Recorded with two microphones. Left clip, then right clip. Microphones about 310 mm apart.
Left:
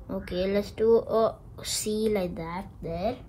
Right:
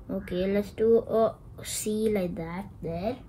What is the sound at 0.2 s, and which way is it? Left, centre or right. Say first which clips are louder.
Speech: left 1 dB; centre.